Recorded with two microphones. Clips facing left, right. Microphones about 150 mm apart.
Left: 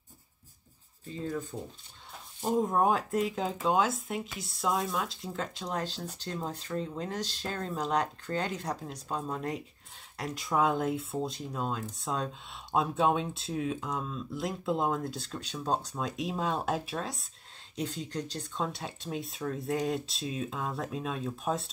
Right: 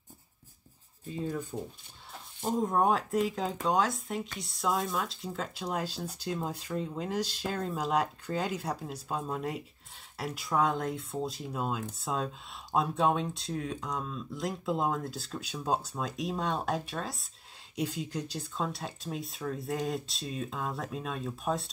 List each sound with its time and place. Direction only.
1.1 s speech: 10° right (ahead or behind)
2.4 s speech: centre (ahead or behind)